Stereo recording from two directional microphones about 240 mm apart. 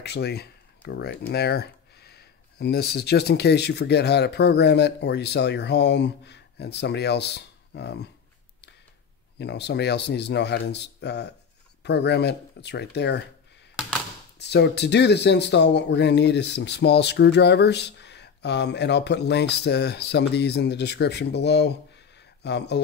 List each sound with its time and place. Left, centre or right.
0.0 s speech: left
9.4 s speech: left
14.4 s speech: left